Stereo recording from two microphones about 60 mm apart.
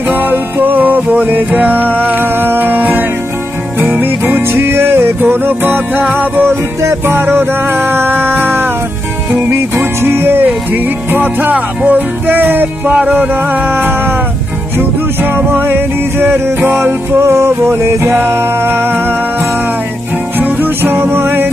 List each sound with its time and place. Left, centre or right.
0.1 s music: right
15.3 s music: right
20.3 s music: right